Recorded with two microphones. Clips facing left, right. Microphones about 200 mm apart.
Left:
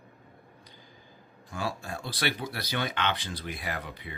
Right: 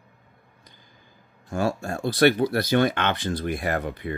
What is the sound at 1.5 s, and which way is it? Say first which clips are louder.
Speech: right 9 dB; 45° right (ahead or behind).